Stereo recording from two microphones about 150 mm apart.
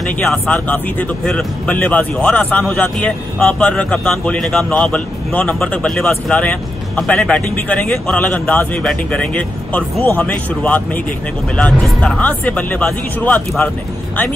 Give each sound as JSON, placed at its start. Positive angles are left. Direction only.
{"t": 0.2, "sound": "speech", "side_deg": 5}